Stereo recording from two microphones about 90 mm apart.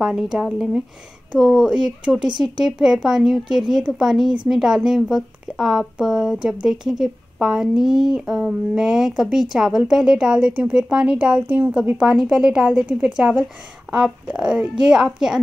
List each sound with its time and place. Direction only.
0.0 s a woman's voice: 5° right (ahead or behind)
2.1 s speech: 60° right (ahead or behind)
2.6 s a woman's voice: 5° right (ahead or behind)
12.1 s a woman's voice: 5° right (ahead or behind)